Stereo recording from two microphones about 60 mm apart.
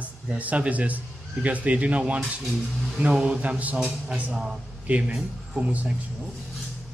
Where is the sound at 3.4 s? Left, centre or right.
Right.